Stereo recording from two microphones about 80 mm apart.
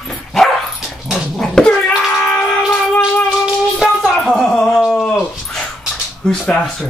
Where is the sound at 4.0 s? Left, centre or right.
Centre.